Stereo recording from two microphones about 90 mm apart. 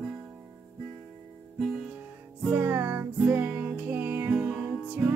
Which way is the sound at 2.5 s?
20° right (ahead or behind).